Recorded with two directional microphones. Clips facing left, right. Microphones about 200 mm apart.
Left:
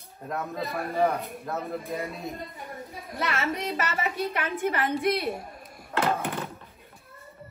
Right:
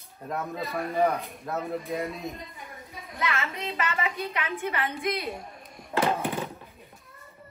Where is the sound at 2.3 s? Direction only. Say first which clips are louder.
Left 4 dB; 50° left (ahead or behind).